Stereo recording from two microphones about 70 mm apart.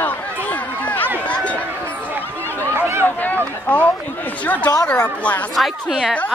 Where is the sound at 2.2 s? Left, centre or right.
Left.